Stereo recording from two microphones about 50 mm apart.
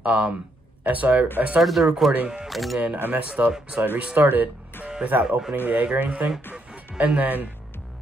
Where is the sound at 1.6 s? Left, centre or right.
Centre.